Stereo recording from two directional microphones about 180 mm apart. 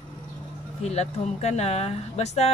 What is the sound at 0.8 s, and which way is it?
Speech, 35° left (ahead or behind).